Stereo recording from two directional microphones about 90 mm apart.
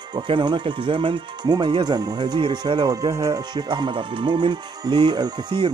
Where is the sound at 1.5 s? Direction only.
55° right (ahead or behind).